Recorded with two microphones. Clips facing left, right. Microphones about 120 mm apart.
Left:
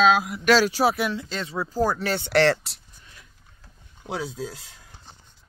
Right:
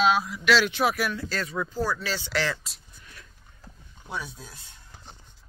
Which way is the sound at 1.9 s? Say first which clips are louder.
Left 8 dB; 60° left (ahead or behind).